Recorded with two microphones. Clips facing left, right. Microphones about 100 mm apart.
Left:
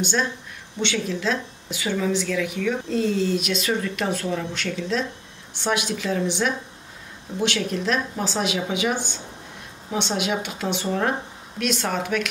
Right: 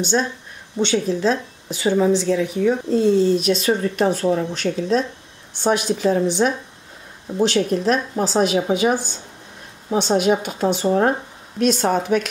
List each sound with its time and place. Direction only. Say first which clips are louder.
0.7 s a woman's voice: right 6 dB; 40° right (ahead or behind)